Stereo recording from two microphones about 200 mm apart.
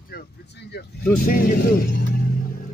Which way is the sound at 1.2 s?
45° left (ahead or behind).